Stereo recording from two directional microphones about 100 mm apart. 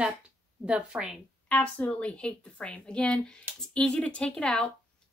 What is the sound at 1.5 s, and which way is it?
Speech, 10° left (ahead or behind).